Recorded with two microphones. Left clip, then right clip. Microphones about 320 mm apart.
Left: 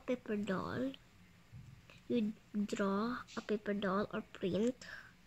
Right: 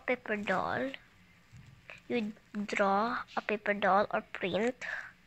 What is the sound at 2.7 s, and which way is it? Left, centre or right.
Speech, centre.